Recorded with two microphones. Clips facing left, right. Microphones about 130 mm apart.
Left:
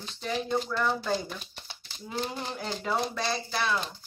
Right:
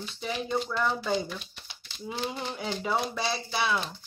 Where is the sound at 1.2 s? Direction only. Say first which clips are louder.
Right 1 dB; 40° left (ahead or behind).